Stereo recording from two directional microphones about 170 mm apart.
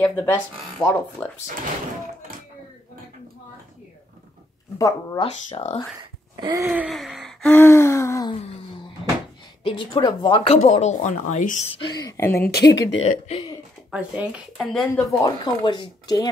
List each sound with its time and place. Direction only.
0.0 s gasp: 10° left (ahead or behind)
4.7 s speech: 20° left (ahead or behind)
5.2 s speech: 35° left (ahead or behind)
6.4 s a sound: 20° right (ahead or behind)
6.7 s gasp: 5° right (ahead or behind)
7.4 s gasp: 15° left (ahead or behind)
8.3 s a sound: 30° left (ahead or behind)
9.6 s speech: 30° left (ahead or behind); by 11.6 s 45° left (ahead or behind)
11.9 s speech: 20° left (ahead or behind)
12.4 s speech: 70° left (ahead or behind)
13.0 s speech: 40° left (ahead or behind)
13.8 s speech: 5° right (ahead or behind)
15.0 s speech: 20° left (ahead or behind)